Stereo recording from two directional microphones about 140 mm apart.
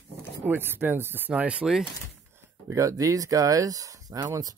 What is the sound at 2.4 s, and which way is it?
Speech, 20° right (ahead or behind).